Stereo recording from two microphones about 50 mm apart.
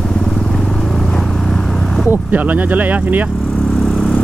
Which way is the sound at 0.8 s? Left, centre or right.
Centre.